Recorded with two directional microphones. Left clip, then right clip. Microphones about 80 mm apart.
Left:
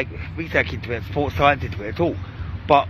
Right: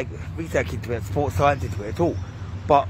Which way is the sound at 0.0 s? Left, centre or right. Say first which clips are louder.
Left 3 dB; centre.